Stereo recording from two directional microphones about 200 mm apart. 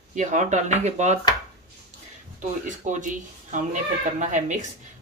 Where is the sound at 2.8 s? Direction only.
40° right (ahead or behind).